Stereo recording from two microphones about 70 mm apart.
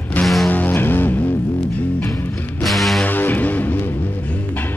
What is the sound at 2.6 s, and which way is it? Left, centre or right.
Music, centre.